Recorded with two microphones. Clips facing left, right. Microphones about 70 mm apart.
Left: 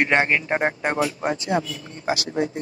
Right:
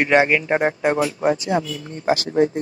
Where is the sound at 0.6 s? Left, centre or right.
Left.